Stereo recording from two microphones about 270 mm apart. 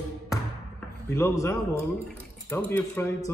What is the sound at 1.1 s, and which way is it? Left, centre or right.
Speech, centre.